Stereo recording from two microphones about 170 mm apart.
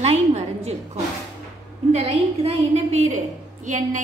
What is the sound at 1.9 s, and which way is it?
A woman's voice, 40° right (ahead or behind).